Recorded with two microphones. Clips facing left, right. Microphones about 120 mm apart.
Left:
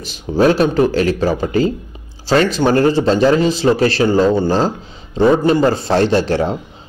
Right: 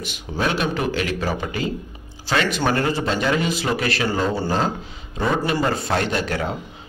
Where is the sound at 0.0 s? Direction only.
35° left (ahead or behind).